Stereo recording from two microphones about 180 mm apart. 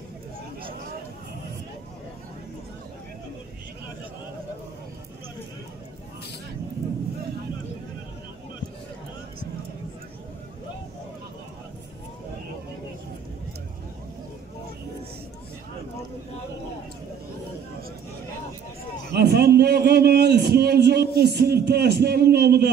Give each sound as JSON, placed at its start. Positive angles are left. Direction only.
{"t": 19.1, "sound": "a man's voice", "side_deg": -60}